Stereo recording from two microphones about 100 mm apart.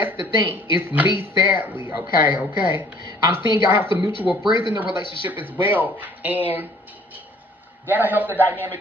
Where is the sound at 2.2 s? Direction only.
20° right (ahead or behind).